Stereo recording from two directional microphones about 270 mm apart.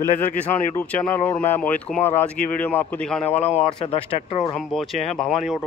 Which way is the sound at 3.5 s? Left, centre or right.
Left.